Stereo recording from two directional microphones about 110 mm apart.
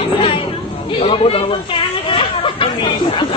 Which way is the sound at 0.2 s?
55° left (ahead or behind).